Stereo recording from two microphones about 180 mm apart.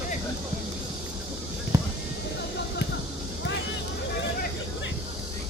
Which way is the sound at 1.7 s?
20° right (ahead or behind).